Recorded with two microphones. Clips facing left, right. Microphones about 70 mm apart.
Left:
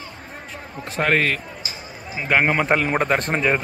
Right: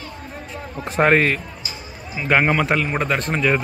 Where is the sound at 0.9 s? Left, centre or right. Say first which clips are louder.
Right 4 dB; right.